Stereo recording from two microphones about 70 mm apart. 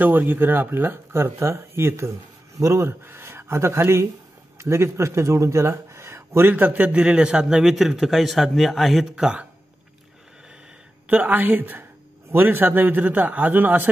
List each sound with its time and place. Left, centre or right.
0.0 s speech: right
2.6 s speech: right
3.0 s speech: right
6.5 s a man's voice: right
6.9 s speech: centre
9.1 s speech: centre
11.1 s a man's voice: right